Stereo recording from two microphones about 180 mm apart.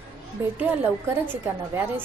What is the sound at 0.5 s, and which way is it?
Speech, 10° right (ahead or behind).